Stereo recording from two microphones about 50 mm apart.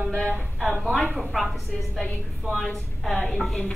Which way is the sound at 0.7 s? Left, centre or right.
Centre.